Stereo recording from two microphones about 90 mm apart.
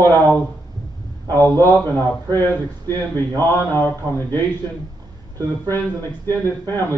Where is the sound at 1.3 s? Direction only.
25° left (ahead or behind).